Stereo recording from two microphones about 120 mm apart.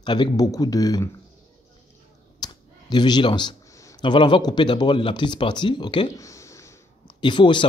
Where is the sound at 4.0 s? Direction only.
40° left (ahead or behind).